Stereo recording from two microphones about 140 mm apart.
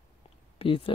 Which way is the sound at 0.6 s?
40° left (ahead or behind).